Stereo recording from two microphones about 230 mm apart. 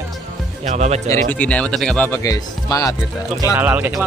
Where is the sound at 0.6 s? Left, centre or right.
Right.